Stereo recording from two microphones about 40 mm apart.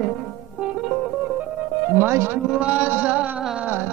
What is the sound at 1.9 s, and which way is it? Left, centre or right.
Music, right.